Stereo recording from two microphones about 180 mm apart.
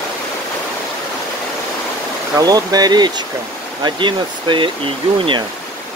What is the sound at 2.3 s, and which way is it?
Speech, 20° right (ahead or behind).